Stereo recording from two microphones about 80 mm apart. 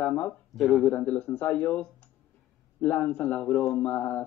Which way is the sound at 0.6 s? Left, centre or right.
Centre.